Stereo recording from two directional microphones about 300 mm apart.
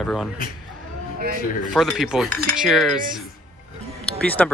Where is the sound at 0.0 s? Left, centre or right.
Centre.